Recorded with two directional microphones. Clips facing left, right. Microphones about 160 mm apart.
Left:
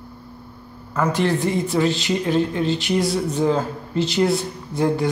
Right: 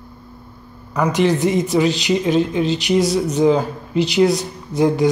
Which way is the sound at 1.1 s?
20° right (ahead or behind).